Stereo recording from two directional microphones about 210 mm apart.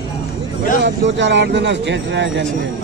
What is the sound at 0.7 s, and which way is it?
Speech, 55° right (ahead or behind).